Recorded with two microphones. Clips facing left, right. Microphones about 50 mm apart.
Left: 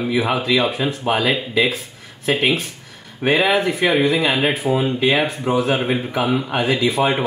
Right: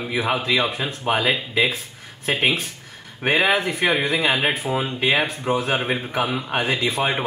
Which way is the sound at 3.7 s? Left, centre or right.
Centre.